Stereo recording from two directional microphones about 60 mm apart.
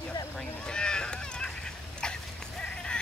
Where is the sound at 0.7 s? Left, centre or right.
Centre.